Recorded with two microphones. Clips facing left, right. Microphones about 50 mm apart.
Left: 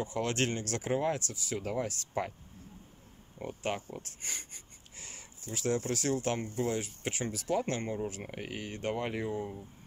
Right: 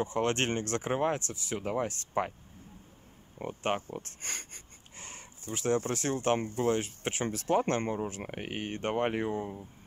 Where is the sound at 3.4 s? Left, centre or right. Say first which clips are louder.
Right 3 dB; right.